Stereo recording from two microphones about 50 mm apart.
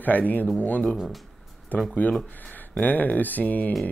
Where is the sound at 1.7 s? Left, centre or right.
Left.